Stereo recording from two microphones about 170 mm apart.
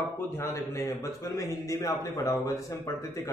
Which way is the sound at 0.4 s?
20° left (ahead or behind).